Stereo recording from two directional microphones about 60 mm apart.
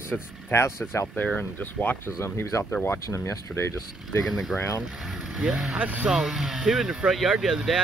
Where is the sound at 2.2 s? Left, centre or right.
Left.